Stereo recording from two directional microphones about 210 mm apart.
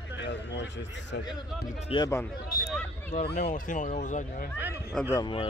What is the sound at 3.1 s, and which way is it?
Speech, 50° left (ahead or behind).